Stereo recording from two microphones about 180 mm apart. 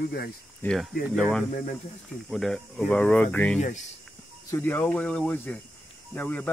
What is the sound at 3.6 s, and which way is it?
Speech, 40° left (ahead or behind).